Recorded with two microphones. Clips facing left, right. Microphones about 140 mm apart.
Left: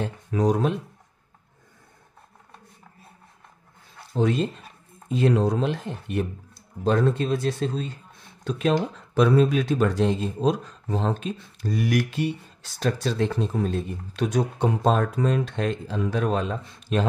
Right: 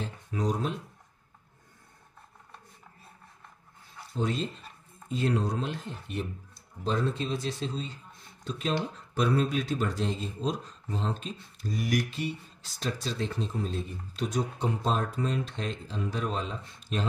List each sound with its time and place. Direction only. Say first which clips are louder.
0.0 s speech: left 8 dB; 65° left (ahead or behind)
4.1 s speech: left 8 dB; 70° left (ahead or behind)
5.1 s speech: left 7 dB; 85° left; by 8.0 s 55° left (ahead or behind)
8.5 s speech: left 8 dB; 65° left (ahead or behind)
9.1 s speech: left 8 dB; 80° left; by 17.0 s 60° left (ahead or behind)